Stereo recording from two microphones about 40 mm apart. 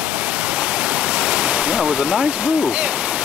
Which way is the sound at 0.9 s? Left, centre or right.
Right.